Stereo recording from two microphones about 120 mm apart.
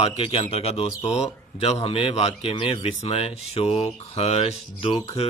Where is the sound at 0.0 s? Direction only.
45° left (ahead or behind); by 1.8 s 60° left (ahead or behind).